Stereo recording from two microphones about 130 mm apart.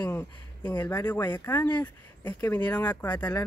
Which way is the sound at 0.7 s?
15° left (ahead or behind).